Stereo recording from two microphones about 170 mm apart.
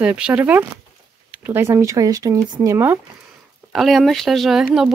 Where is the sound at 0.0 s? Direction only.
10° right (ahead or behind).